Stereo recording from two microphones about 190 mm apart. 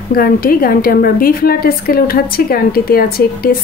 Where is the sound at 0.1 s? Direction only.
50° left (ahead or behind).